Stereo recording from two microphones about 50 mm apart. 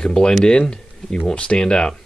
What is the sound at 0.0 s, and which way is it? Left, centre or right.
Speech, centre.